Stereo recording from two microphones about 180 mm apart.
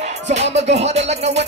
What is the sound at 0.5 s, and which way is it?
Music, 35° right (ahead or behind).